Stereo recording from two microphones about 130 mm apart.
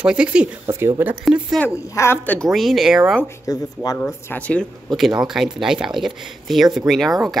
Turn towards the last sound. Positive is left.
turn(degrees=0)  # may be behind; listen again after turning